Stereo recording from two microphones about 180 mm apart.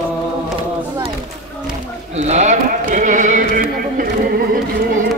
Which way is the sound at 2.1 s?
40° right (ahead or behind).